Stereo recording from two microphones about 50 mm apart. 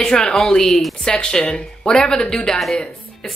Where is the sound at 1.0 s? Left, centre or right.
Centre.